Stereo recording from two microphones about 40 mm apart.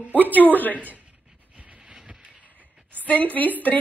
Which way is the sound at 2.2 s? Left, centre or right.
Right.